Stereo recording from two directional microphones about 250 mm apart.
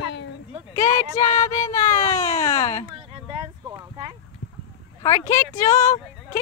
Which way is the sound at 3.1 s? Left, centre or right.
Centre.